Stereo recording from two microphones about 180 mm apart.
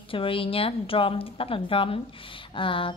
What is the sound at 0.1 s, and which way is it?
A woman's voice, 30° left (ahead or behind).